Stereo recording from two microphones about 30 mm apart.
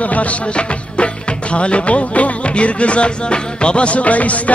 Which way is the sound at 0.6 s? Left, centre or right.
Left.